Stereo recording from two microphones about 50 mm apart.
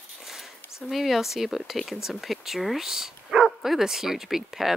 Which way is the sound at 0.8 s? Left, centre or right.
Centre.